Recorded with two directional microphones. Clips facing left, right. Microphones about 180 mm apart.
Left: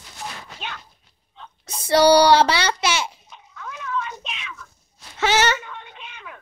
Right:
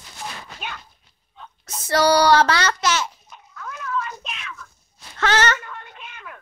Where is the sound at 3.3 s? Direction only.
Centre (ahead or behind).